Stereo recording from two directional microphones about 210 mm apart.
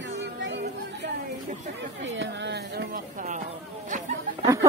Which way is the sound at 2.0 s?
65° right (ahead or behind).